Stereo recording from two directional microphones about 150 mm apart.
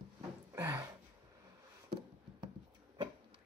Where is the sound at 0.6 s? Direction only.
15° right (ahead or behind).